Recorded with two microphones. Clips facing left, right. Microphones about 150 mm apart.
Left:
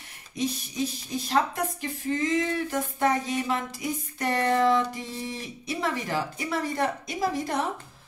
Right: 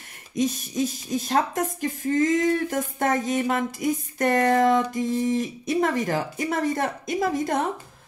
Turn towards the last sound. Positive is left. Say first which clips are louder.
# right 4 dB
turn(degrees=-50)  # may be behind; listen again after turning